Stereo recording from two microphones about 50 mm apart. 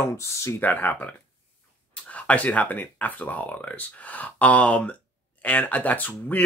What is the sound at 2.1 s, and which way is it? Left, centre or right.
Speech, left.